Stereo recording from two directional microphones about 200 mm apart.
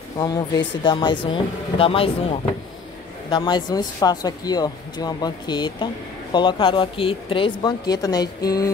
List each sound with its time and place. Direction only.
0.2 s speech: 20° left (ahead or behind)
3.3 s speech: 20° left (ahead or behind)